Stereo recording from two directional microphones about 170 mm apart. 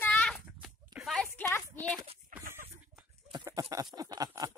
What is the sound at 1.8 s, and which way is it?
Clip-clop, centre (ahead or behind).